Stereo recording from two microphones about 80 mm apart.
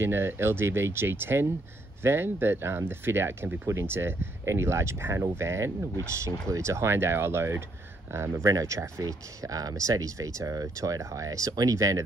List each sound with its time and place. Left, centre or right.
0.0 s speech: right